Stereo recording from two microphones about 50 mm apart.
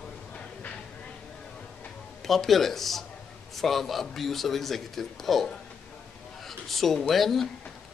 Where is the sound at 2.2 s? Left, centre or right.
Centre.